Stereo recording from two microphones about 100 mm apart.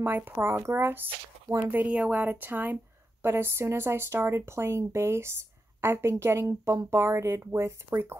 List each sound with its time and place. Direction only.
0.0 s speech: 20° right (ahead or behind)